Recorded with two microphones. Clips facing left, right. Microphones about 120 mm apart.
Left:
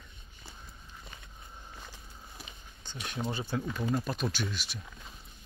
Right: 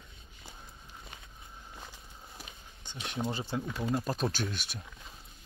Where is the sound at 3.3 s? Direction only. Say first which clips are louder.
Left 1 dB; 25° right (ahead or behind).